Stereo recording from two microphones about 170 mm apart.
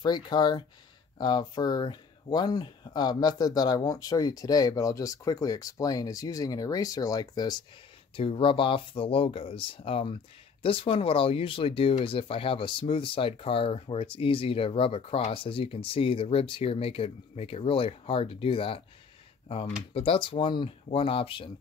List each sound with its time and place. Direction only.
0.0 s speech: 25° left (ahead or behind)
8.2 s speech: 35° left (ahead or behind)